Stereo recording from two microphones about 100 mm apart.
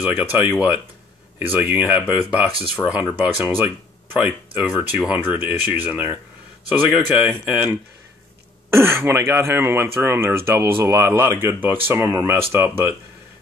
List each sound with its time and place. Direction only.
0.0 s speech: 15° right (ahead or behind)
1.6 s speech: 15° right (ahead or behind)
6.9 s speech: 5° right (ahead or behind)
7.4 s speech: 15° right (ahead or behind)